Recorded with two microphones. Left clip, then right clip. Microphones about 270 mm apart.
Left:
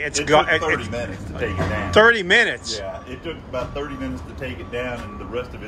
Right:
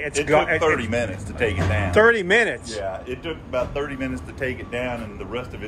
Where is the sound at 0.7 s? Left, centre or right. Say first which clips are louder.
Right 2 dB; right.